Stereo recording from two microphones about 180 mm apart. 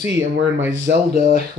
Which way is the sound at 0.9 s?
55° right (ahead or behind).